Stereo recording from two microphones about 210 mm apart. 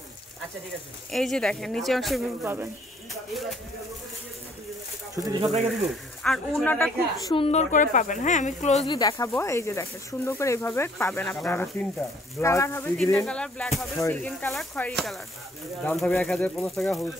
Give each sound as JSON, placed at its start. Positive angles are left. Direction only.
{"t": 1.1, "sound": "speech", "side_deg": 0}
{"t": 2.4, "sound": "speech", "side_deg": -10}
{"t": 5.1, "sound": "speech", "side_deg": -20}
{"t": 5.9, "sound": "speech", "side_deg": 0}
{"t": 7.2, "sound": "speech", "side_deg": 25}
{"t": 8.9, "sound": "speech", "side_deg": 20}